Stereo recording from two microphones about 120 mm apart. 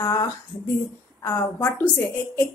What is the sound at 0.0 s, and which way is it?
Speech, 30° left (ahead or behind).